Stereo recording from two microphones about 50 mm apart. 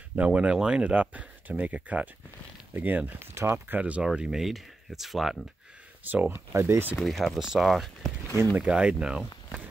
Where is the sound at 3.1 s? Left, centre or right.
Right.